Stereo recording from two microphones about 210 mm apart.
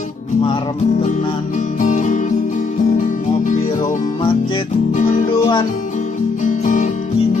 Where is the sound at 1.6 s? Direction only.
35° left (ahead or behind).